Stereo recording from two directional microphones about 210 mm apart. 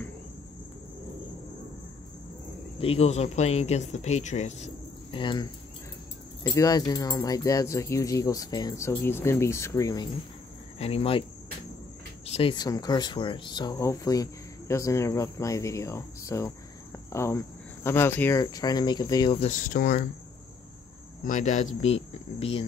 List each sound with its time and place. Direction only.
2.8 s speech: 30° left (ahead or behind)
5.1 s speech: 20° left (ahead or behind)
10.8 s speech: 30° left (ahead or behind)
12.3 s speech: 25° left (ahead or behind)
21.2 s speech: 35° left (ahead or behind)
21.8 s cricket: 30° left (ahead or behind)